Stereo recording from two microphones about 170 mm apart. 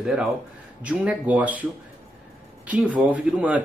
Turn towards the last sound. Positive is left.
turn(degrees=-10)  # may be behind; listen again after turning